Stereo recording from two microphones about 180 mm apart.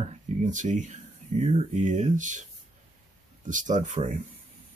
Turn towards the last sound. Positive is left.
turn(degrees=-40)  # may be behind; listen again after turning